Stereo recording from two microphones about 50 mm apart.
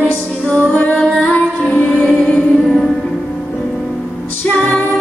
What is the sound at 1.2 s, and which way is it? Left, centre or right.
Music, left.